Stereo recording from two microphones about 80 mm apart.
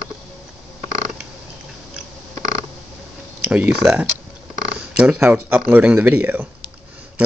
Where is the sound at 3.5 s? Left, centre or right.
Centre.